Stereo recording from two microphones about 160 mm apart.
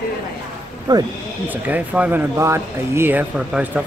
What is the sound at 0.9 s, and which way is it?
Speech, 25° right (ahead or behind).